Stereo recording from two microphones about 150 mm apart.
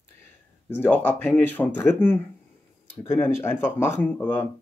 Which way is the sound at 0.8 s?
10° left (ahead or behind).